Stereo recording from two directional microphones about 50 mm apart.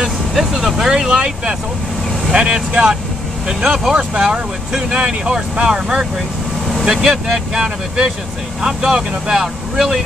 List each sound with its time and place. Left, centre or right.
0.5 s speech: centre